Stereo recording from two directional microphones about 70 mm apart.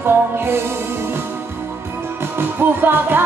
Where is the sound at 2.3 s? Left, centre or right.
Right.